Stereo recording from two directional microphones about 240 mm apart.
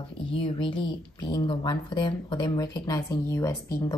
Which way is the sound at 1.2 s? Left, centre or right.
Centre.